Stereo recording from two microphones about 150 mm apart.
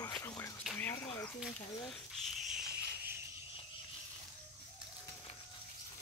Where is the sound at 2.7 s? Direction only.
90° right.